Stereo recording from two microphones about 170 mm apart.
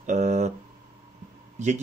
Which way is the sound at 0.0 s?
45° right (ahead or behind).